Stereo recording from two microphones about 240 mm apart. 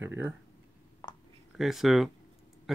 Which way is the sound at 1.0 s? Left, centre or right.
Centre.